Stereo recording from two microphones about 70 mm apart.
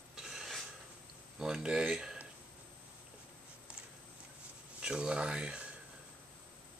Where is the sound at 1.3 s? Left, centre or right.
Centre.